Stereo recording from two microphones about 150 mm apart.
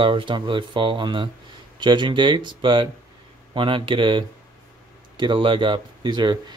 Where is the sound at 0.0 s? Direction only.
35° right (ahead or behind).